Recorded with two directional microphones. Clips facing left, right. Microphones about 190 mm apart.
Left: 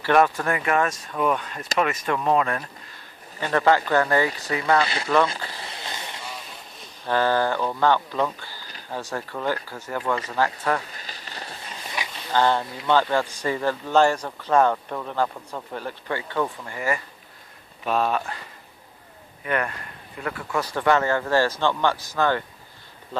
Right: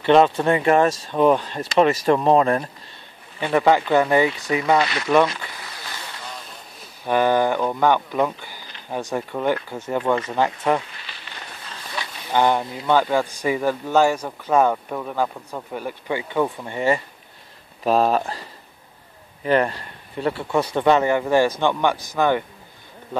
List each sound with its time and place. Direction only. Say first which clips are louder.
0.0 s speech: right 4 dB; 20° right (ahead or behind)
3.3 s a man's voice: right 3 dB; 15° right (ahead or behind)
4.8 s speech: right 3 dB; 30° left (ahead or behind)
5.6 s a sound: left 1 dB; 25° left (ahead or behind)
7.1 s a man's voice: right 3 dB; 15° right (ahead or behind)
10.9 s rain on surface: left 1 dB; 40° left (ahead or behind)
11.7 s a sound: right 1 dB; 15° left (ahead or behind)
12.3 s a man's voice: right 2 dB; 15° right (ahead or behind); by 18.4 s 35° right (ahead or behind)
19.4 s a man's voice: right 7 dB; 30° right (ahead or behind)